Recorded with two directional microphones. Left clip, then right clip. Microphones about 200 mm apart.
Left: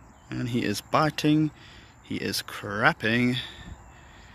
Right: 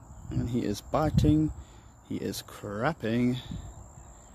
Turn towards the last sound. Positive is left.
turn(degrees=0)  # may be behind; listen again after turning